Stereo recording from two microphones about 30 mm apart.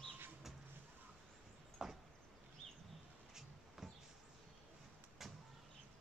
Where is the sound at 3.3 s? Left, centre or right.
Centre.